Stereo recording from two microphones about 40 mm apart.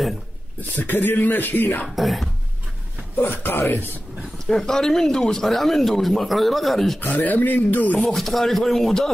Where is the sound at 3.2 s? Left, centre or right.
Left.